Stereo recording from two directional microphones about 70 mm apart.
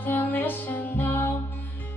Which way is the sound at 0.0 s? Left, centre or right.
Left.